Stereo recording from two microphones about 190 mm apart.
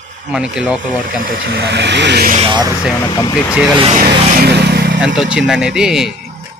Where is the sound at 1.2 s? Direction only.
50° right (ahead or behind).